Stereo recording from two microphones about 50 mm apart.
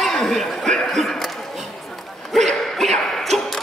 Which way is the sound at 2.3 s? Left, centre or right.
Centre.